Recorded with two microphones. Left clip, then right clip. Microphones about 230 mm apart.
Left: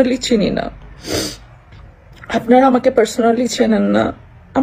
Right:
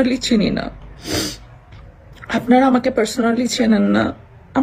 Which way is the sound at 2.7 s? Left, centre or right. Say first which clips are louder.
Left 4 dB; centre.